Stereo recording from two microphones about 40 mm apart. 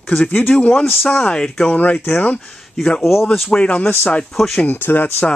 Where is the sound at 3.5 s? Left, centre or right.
Left.